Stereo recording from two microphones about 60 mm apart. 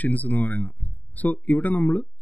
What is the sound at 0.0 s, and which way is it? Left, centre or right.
Speech, left.